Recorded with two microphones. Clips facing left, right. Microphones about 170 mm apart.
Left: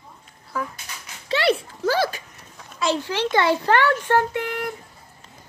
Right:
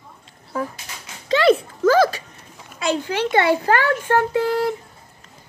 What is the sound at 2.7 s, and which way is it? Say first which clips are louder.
Speech: right 1 dB; 55° right (ahead or behind).